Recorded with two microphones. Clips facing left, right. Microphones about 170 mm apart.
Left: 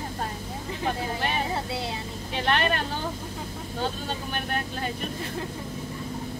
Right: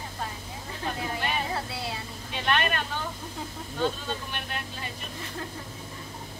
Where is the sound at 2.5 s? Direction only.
35° left (ahead or behind).